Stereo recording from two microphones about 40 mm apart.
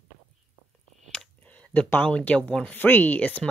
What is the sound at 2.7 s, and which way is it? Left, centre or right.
Speech, left.